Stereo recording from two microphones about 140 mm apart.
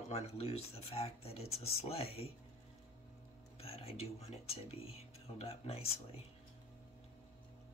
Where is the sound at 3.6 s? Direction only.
45° left (ahead or behind).